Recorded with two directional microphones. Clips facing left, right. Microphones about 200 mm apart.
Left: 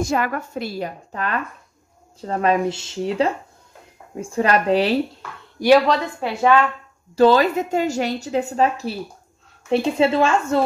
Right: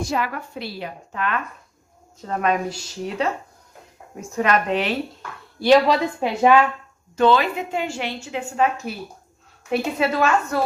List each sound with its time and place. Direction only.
0.0 s a woman's voice: 45° left (ahead or behind)
5.9 s a woman's voice: 15° right (ahead or behind)
7.2 s a woman's voice: 40° left (ahead or behind)
9.9 s a woman's voice: 25° left (ahead or behind)